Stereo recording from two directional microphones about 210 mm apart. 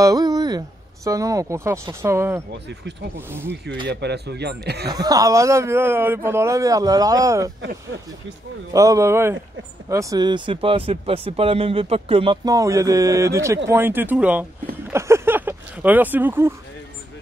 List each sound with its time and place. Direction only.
0.0 s a man's voice: 15° right (ahead or behind)
3.9 s speech: 55° right (ahead or behind)
4.8 s a man's voice: 20° right (ahead or behind)
8.7 s a man's voice: 15° right (ahead or behind)